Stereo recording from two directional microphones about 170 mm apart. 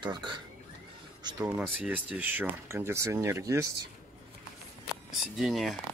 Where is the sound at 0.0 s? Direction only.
25° right (ahead or behind).